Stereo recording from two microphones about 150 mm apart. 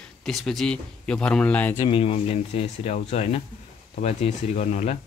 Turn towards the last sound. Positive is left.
turn(degrees=50)  # may be behind; listen again after turning